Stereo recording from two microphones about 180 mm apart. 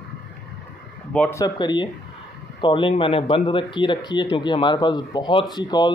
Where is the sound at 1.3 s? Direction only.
20° left (ahead or behind).